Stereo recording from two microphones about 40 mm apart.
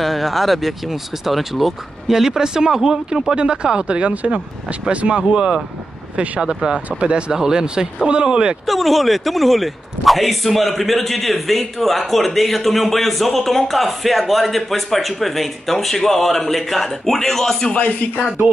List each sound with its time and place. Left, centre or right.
0.0 s speech: centre
6.9 s speech: right
7.3 s speech: centre
8.6 s speech: centre
17.7 s speech: left